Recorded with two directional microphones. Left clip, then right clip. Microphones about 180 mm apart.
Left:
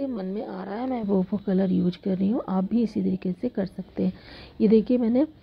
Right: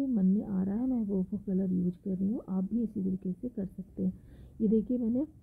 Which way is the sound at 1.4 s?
20° left (ahead or behind).